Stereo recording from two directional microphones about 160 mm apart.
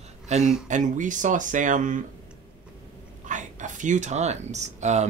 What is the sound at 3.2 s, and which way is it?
Speech, 50° right (ahead or behind).